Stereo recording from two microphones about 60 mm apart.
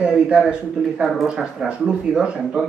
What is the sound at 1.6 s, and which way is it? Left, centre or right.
Speech, centre.